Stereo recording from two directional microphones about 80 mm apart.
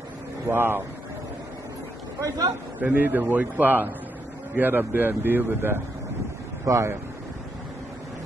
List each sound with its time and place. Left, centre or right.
0.5 s a man's voice: right
2.1 s a man's voice: right
2.8 s a man's voice: right
6.6 s speech: right